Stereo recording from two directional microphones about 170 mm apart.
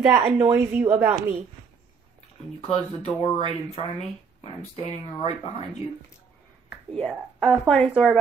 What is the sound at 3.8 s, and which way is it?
Speech, 35° left (ahead or behind).